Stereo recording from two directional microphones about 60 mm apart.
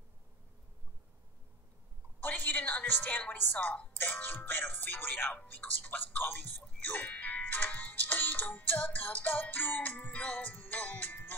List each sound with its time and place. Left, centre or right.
2.2 s music: left
4.0 s speech: left
10.8 s music: left